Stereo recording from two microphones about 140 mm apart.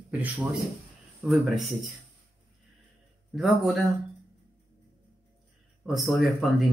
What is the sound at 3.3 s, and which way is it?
Speech, centre (ahead or behind).